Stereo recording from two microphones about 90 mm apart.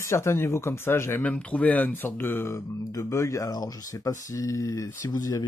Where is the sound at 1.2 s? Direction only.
15° left (ahead or behind); by 5.4 s 40° left (ahead or behind).